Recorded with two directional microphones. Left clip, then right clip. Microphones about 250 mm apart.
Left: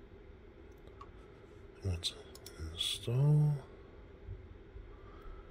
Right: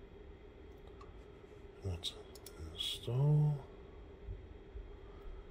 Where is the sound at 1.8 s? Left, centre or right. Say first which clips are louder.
Left 4 dB; centre.